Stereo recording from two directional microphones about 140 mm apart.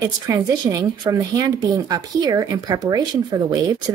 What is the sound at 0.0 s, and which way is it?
Speech, 25° right (ahead or behind).